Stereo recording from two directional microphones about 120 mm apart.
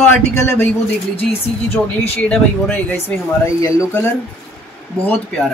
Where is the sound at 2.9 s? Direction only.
25° left (ahead or behind).